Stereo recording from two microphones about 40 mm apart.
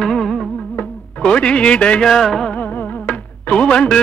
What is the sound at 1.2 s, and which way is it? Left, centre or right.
Speech, left.